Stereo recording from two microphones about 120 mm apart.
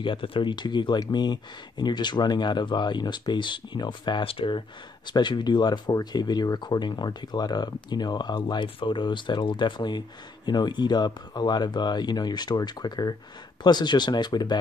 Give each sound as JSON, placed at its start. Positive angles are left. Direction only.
{"t": 0.0, "sound": "speech", "side_deg": 45}